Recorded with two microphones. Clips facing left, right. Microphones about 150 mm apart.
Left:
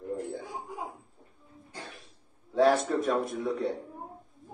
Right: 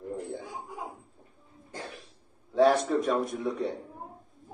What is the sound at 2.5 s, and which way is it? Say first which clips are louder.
A man's voice: right 1 dB; centre (ahead or behind).